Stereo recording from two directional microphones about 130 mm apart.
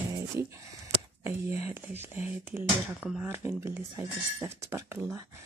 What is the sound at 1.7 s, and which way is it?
Speech, 15° right (ahead or behind).